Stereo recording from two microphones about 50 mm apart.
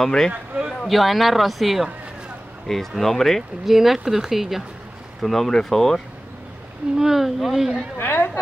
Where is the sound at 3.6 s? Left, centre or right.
Centre.